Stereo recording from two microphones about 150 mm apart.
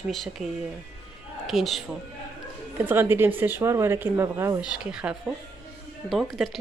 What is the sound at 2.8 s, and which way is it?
Speech, 15° right (ahead or behind).